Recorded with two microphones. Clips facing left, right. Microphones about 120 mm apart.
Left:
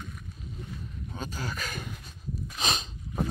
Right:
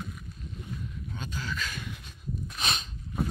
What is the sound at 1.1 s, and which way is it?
Speech, 40° left (ahead or behind).